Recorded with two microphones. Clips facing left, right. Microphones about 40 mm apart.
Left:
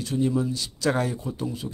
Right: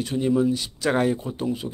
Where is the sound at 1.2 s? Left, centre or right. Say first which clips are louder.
Right 4 dB; right.